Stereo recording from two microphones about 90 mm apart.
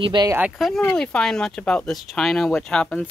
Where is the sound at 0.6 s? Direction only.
5° right (ahead or behind).